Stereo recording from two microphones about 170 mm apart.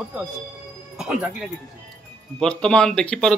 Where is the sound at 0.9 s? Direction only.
5° right (ahead or behind).